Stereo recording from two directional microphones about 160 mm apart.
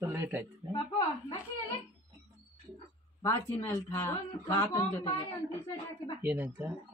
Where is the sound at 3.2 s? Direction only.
20° left (ahead or behind).